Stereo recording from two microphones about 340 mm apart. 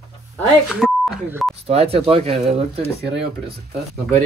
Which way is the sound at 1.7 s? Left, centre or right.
Centre.